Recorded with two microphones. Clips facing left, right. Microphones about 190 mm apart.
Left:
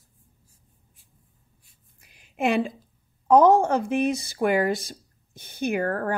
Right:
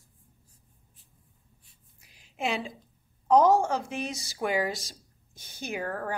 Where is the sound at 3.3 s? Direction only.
55° left (ahead or behind).